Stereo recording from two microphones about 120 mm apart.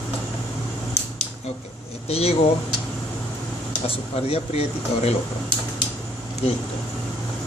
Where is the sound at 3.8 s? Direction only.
55° left (ahead or behind).